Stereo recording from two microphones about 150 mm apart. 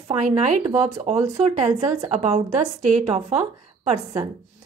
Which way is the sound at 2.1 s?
45° right (ahead or behind).